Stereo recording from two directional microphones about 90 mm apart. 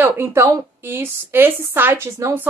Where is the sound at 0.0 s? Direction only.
25° right (ahead or behind).